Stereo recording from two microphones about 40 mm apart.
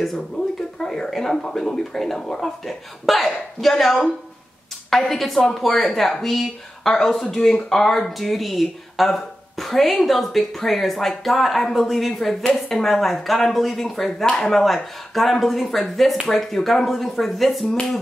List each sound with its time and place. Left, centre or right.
0.7 s speech: centre
6.9 s speech: centre
14.2 s speech: left
14.5 s speech: centre